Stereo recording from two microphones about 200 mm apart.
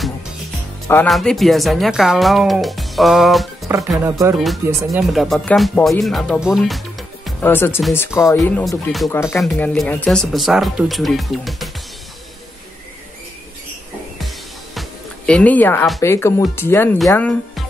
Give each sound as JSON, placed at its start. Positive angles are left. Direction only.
{"t": 1.0, "sound": "speech", "side_deg": 0}
{"t": 3.6, "sound": "speech", "side_deg": -15}
{"t": 4.6, "sound": "speech", "side_deg": -5}
{"t": 7.4, "sound": "speech", "side_deg": 10}
{"t": 14.2, "sound": "music", "side_deg": 0}
{"t": 16.0, "sound": "speech", "side_deg": 15}